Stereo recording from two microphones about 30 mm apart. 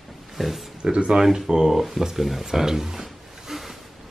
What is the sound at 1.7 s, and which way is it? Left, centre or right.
Speech, centre.